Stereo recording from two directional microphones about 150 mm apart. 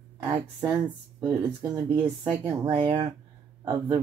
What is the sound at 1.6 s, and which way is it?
Speech, 15° right (ahead or behind).